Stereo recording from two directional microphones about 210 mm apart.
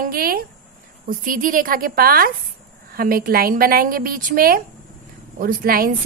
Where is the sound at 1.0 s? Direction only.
40° right (ahead or behind).